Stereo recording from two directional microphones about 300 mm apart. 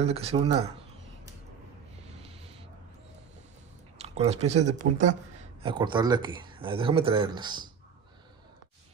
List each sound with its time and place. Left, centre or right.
0.0 s speech: centre
4.0 s speech: right